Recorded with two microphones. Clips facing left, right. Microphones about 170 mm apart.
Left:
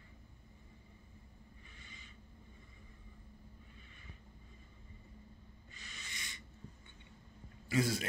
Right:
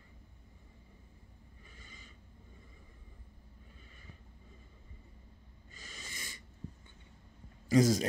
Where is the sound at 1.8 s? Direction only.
40° right (ahead or behind).